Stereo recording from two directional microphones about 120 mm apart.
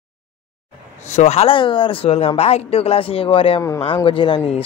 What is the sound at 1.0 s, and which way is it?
Speech, 75° left (ahead or behind).